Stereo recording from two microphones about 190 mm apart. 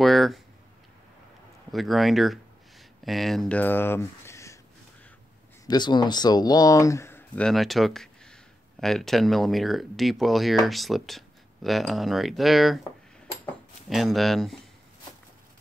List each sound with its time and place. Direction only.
0.0 s speech: centre (ahead or behind)
1.7 s speech: centre (ahead or behind)
5.7 s speech: 25° left (ahead or behind); by 12.8 s centre (ahead or behind)
13.8 s speech: centre (ahead or behind)